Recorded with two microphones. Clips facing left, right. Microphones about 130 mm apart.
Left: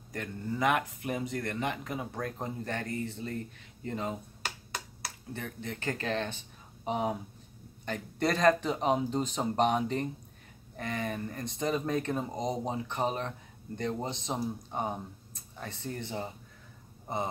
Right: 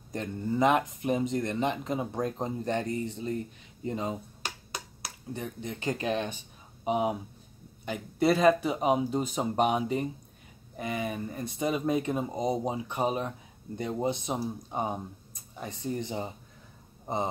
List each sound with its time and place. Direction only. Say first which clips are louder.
0.1 s speech: right 5 dB; 25° right (ahead or behind)